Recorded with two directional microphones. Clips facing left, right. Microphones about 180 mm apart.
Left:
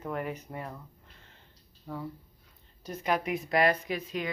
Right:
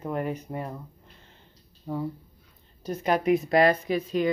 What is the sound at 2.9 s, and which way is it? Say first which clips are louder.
A woman's voice: right 7 dB; 35° right (ahead or behind).